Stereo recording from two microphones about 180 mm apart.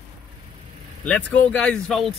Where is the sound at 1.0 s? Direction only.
5° left (ahead or behind).